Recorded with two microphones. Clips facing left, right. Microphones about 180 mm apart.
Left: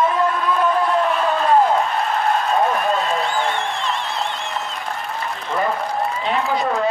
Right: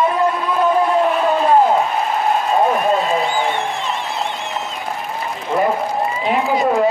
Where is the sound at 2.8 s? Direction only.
Centre (ahead or behind).